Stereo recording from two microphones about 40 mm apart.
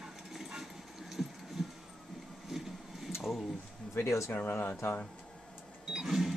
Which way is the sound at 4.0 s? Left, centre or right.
Left.